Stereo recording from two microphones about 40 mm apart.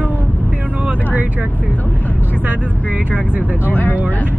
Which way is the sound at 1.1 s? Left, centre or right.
Right.